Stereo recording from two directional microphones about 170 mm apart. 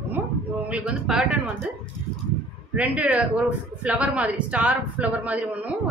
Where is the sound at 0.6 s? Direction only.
5° right (ahead or behind).